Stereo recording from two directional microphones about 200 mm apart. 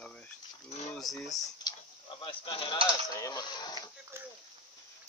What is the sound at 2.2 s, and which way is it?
Speech, 25° left (ahead or behind).